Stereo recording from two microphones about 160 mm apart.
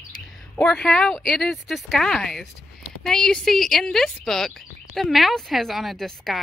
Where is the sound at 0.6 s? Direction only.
5° left (ahead or behind).